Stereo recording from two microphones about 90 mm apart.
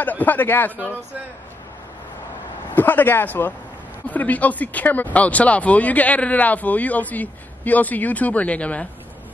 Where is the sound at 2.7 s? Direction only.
20° left (ahead or behind).